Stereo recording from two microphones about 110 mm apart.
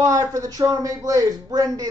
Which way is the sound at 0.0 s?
35° right (ahead or behind).